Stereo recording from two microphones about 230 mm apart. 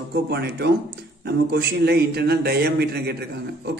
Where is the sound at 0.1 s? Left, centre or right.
Right.